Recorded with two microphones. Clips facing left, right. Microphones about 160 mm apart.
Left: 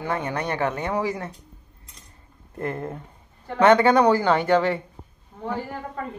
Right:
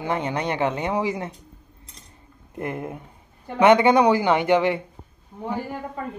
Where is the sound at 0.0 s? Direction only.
20° right (ahead or behind).